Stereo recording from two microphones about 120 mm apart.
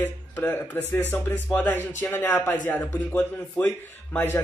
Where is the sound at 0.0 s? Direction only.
15° left (ahead or behind).